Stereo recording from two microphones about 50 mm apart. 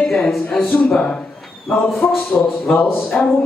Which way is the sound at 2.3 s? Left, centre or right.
Left.